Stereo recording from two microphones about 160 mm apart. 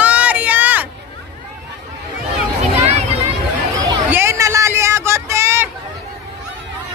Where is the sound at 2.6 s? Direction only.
45° right (ahead or behind).